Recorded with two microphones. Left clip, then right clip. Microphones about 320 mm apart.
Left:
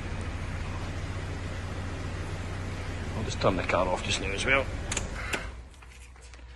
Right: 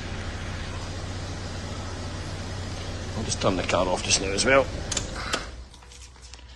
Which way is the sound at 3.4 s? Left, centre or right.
Centre.